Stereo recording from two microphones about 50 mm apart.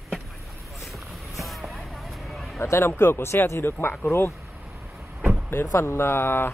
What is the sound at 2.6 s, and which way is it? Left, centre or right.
Speech, left.